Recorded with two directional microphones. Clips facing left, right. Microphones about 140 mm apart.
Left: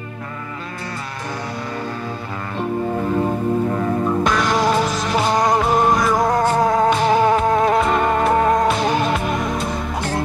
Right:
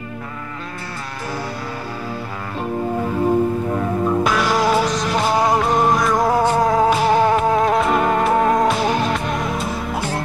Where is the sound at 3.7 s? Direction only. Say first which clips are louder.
Even; 5° right (ahead or behind).